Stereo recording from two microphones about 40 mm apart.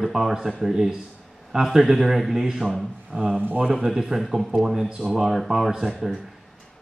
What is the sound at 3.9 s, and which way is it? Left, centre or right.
Speech, centre.